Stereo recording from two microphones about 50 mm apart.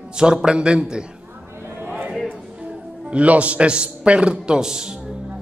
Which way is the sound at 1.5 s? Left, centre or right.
Right.